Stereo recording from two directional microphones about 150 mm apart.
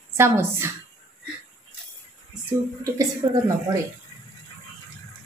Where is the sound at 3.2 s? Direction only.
25° right (ahead or behind).